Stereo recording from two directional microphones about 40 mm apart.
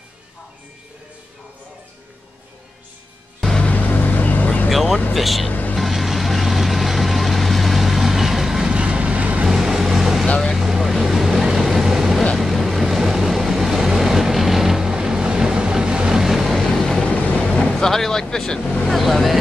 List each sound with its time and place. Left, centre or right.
3.7 s vehicle: left
4.6 s vehicle: centre
5.1 s speech: centre
5.5 s vehicle: left
5.8 s vehicle: centre
8.7 s vehicle: right
9.5 s vehicle: centre
16.5 s vehicle: centre
17.0 s vehicle: left
17.5 s vehicle: centre
18.9 s vehicle: centre